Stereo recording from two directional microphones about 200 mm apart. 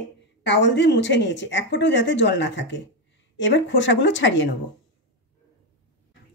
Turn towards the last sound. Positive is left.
turn(degrees=65)  # may be behind; listen again after turning